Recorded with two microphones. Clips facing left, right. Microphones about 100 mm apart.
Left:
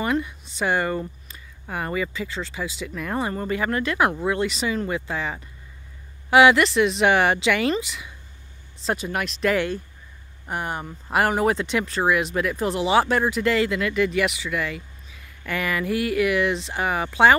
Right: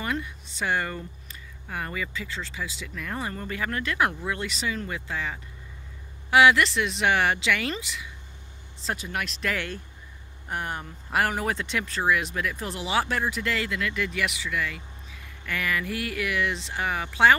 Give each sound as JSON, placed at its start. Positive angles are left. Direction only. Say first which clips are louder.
{"t": 0.0, "sound": "speech", "louder": "left 6 dB", "side_deg": 20}
{"t": 2.9, "sound": "speech", "louder": "left 7 dB", "side_deg": 30}